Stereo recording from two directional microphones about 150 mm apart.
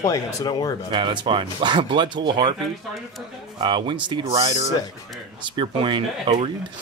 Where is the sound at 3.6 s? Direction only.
30° right (ahead or behind).